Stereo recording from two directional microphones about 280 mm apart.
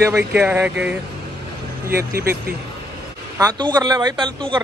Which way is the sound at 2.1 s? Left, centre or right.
Right.